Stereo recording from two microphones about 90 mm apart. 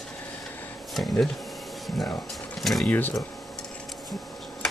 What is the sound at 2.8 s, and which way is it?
Speech, 20° left (ahead or behind).